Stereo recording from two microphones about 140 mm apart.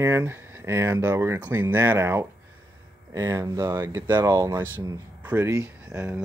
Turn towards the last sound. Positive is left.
turn(degrees=-5)  # may be behind; listen again after turning